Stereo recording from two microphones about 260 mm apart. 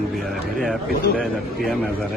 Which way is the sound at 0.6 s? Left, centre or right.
Centre.